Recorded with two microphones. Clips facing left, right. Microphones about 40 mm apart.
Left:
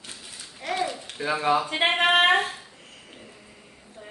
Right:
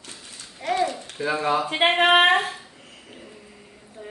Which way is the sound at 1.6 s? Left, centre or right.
Centre.